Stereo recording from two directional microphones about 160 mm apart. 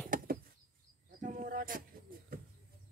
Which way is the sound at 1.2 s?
55° right (ahead or behind).